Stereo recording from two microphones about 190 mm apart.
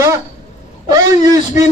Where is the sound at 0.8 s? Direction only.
20° right (ahead or behind).